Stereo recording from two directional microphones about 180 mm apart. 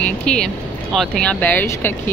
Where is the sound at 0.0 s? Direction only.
5° left (ahead or behind).